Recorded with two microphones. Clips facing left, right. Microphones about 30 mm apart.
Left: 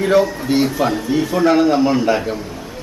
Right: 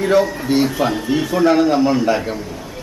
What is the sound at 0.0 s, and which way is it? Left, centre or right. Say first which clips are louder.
A man's voice: left 1 dB; centre.